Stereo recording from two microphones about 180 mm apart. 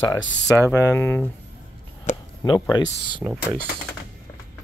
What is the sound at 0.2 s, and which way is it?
Speech, 15° left (ahead or behind).